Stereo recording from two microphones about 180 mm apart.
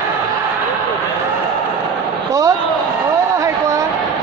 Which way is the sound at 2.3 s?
15° right (ahead or behind).